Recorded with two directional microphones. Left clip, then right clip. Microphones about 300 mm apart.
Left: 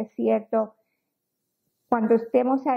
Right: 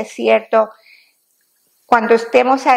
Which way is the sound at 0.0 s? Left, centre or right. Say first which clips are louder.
Right 10 dB; centre.